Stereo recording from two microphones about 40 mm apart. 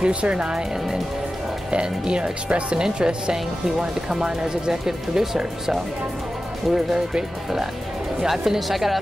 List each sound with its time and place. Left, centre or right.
0.0 s speech: right
1.7 s speech: right; by 8.9 s centre